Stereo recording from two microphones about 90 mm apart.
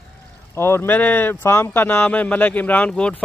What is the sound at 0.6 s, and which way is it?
Speech, 25° left (ahead or behind).